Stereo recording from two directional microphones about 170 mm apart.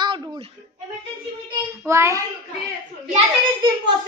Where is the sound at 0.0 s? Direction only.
25° right (ahead or behind).